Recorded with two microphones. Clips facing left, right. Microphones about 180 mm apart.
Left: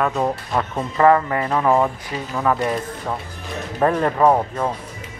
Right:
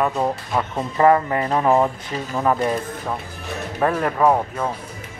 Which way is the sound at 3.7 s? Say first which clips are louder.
Left 2 dB; 5° left (ahead or behind).